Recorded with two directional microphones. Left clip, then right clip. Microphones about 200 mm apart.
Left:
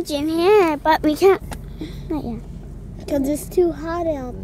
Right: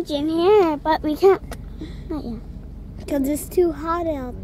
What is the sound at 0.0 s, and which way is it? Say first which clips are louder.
Speech: left 1 dB; 30° left (ahead or behind).